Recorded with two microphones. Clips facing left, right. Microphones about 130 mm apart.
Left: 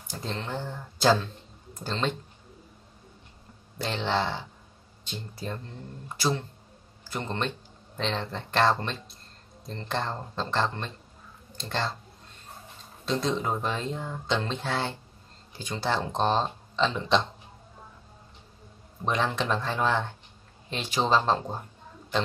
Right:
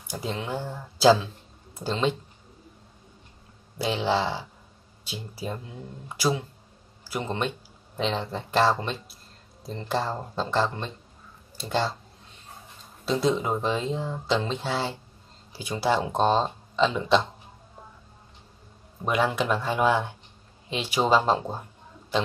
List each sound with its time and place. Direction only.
0.1 s speech: 10° right (ahead or behind)
3.7 s speech: 10° right (ahead or behind)
13.0 s speech: 5° right (ahead or behind)
19.0 s speech: 10° right (ahead or behind)